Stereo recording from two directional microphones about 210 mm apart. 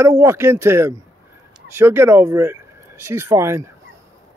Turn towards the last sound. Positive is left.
turn(degrees=-15)  # may be behind; listen again after turning